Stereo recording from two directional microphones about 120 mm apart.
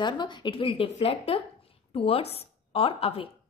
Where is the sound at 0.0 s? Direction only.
40° left (ahead or behind).